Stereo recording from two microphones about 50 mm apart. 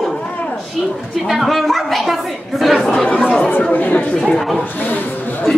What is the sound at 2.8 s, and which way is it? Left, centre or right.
Speech, centre.